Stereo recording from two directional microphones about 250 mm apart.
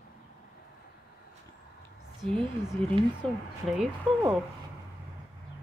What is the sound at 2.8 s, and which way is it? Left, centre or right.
A man's voice, centre.